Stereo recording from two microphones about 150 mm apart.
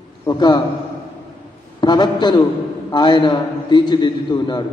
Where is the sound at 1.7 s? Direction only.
30° left (ahead or behind).